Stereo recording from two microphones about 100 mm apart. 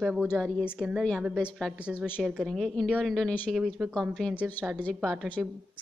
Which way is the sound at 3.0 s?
5° left (ahead or behind).